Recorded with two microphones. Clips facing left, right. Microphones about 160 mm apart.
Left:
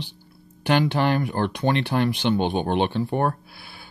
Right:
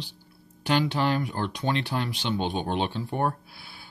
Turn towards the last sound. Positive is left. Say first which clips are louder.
# left 3 dB
turn(degrees=60)  # may be behind; listen again after turning